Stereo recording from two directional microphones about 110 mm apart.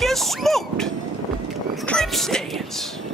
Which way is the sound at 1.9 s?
5° left (ahead or behind).